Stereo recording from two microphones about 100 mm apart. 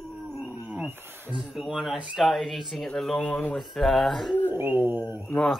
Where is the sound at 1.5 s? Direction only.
Centre (ahead or behind); by 3.5 s 15° left (ahead or behind).